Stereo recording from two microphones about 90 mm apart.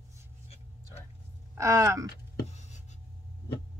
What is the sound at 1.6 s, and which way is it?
Speech, 35° right (ahead or behind).